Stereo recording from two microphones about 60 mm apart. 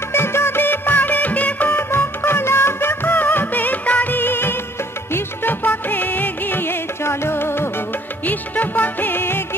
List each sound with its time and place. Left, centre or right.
0.1 s music: left
8.3 s music: left